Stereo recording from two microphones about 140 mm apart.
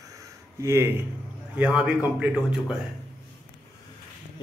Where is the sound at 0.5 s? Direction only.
20° right (ahead or behind).